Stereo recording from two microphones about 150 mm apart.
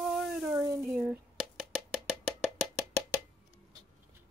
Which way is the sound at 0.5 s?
15° right (ahead or behind).